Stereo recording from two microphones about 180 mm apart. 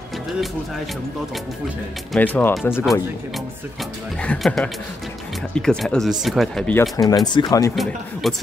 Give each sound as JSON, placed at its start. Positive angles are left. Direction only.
{"t": 2.1, "sound": "speech", "side_deg": 10}
{"t": 4.2, "sound": "speech", "side_deg": 5}
{"t": 6.8, "sound": "speech", "side_deg": 20}
{"t": 7.7, "sound": "speech", "side_deg": 0}